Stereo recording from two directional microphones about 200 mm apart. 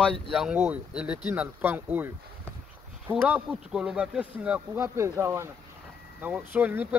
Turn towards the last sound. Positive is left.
turn(degrees=-10)  # may be behind; listen again after turning